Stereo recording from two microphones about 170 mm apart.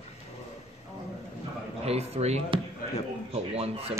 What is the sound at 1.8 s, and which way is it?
A man's voice, 40° right (ahead or behind).